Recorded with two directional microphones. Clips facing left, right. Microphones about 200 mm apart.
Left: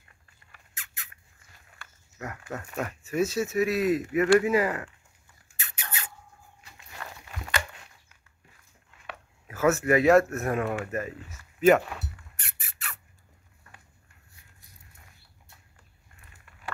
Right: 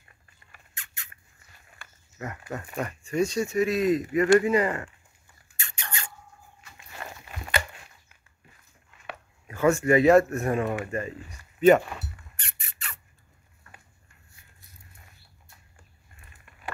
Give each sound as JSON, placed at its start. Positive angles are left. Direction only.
{"t": 0.7, "sound": "rodents", "side_deg": 0}
{"t": 2.2, "sound": "speech", "side_deg": 0}
{"t": 5.6, "sound": "rodents", "side_deg": 5}
{"t": 9.5, "sound": "speech", "side_deg": 5}
{"t": 11.6, "sound": "a sound", "side_deg": 0}